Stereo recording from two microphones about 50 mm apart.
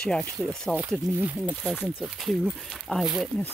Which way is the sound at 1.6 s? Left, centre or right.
Left.